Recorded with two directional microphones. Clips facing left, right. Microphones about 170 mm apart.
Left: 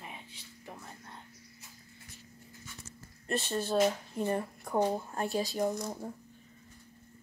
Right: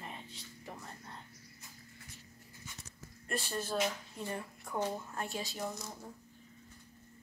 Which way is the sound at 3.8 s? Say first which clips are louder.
Left 8 dB; 40° left (ahead or behind).